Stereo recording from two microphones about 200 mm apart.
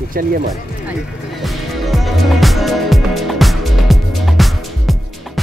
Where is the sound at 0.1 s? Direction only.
45° right (ahead or behind).